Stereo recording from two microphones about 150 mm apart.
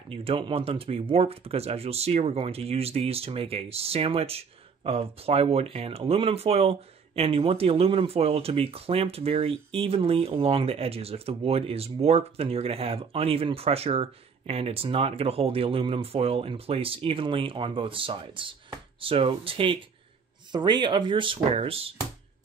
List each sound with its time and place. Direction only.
0.1 s speech: 35° right (ahead or behind)